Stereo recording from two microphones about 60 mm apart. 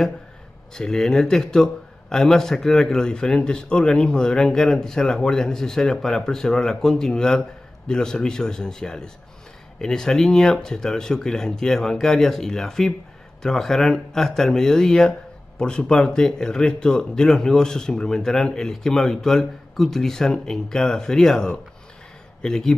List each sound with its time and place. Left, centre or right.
0.7 s a man's voice: centre